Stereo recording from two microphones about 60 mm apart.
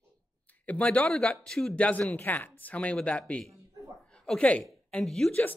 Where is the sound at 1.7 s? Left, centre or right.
Left.